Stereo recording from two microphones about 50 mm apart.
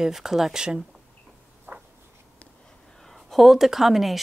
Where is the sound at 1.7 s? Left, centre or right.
Right.